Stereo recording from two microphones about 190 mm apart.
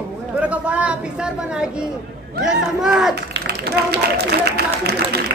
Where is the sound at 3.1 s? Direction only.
60° right (ahead or behind).